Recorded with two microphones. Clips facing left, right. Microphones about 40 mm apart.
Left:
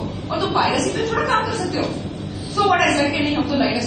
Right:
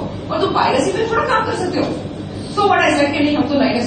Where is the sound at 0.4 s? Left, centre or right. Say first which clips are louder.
Right 4 dB; right.